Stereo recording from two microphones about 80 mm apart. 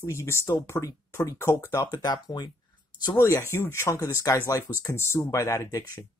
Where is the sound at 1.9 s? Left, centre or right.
Left.